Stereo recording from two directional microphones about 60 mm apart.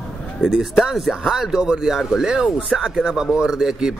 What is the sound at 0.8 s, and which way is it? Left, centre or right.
Speech, centre.